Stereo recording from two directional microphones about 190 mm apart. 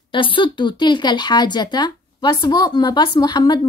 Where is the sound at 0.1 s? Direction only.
25° left (ahead or behind).